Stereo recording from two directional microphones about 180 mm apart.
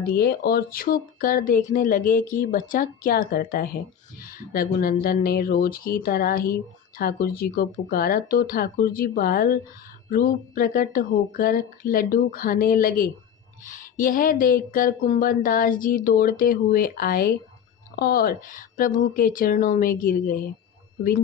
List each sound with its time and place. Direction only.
0.0 s speech: 60° left (ahead or behind)